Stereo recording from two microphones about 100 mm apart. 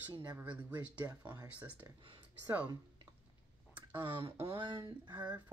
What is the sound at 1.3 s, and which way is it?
Speech, 45° right (ahead or behind).